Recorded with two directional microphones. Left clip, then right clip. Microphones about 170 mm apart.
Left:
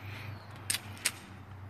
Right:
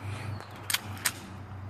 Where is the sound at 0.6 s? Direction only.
25° left (ahead or behind).